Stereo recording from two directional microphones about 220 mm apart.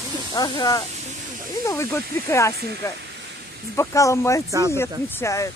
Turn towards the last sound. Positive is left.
turn(degrees=10)  # may be behind; listen again after turning